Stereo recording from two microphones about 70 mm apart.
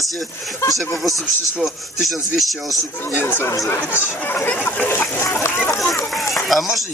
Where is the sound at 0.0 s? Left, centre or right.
Centre.